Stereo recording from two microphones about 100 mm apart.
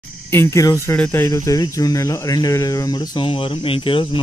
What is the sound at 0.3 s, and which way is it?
Speech, 30° left (ahead or behind).